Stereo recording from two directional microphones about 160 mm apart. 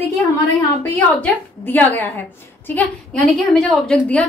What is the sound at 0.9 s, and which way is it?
A woman's voice, 10° left (ahead or behind).